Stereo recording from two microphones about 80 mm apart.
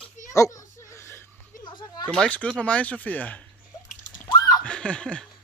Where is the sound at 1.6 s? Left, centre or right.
Left.